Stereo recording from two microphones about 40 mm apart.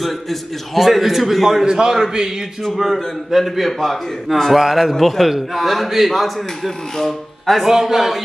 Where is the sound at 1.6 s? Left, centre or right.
Centre.